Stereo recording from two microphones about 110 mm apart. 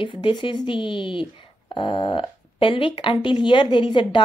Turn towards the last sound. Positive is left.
turn(degrees=45)  # may be behind; listen again after turning